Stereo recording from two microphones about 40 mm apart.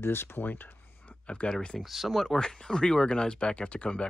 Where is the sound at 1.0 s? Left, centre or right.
Left.